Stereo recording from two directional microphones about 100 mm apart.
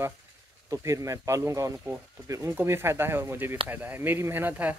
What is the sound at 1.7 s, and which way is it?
Speech, 20° right (ahead or behind).